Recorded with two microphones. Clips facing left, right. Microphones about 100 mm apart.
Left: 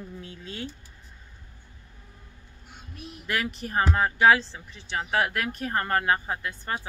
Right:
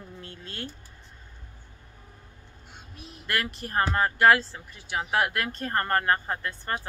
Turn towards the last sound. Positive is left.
turn(degrees=10)  # may be behind; listen again after turning